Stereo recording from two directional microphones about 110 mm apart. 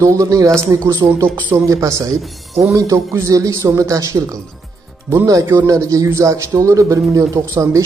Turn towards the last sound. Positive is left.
turn(degrees=-30)  # may be behind; listen again after turning